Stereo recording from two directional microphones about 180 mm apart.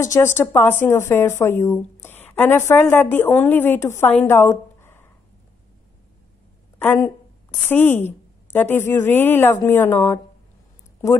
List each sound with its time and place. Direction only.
0.0 s speech: 15° left (ahead or behind)
6.8 s speech: 10° left (ahead or behind)